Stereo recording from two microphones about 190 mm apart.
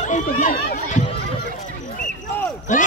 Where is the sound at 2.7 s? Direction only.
40° left (ahead or behind).